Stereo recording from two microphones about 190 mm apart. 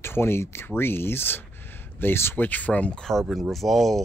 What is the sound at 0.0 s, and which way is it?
Speech, 10° left (ahead or behind).